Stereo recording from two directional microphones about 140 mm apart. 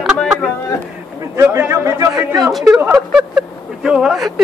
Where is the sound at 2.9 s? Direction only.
5° right (ahead or behind).